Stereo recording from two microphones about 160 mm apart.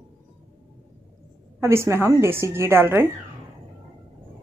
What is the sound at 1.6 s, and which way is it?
A woman's voice, 15° right (ahead or behind).